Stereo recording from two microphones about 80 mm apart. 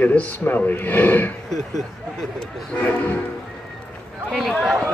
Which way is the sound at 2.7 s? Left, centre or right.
Centre.